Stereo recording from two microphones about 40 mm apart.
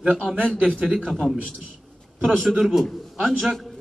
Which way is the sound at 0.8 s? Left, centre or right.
Centre.